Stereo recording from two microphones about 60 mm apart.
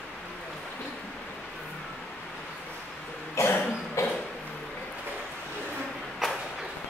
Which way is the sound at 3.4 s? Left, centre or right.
Left.